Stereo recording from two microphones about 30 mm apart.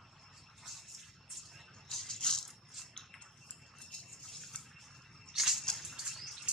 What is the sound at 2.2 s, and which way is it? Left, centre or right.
Rattle, centre.